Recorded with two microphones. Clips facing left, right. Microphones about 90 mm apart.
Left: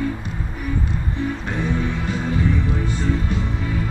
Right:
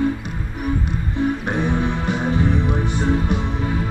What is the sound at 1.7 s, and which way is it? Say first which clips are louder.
Music: right 2 dB; 20° right (ahead or behind).